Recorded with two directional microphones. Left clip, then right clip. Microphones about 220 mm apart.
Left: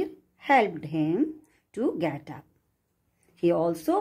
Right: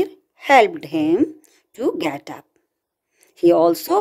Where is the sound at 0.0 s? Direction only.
45° right (ahead or behind).